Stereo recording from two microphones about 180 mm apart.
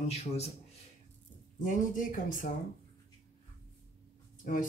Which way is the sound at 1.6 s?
45° left (ahead or behind).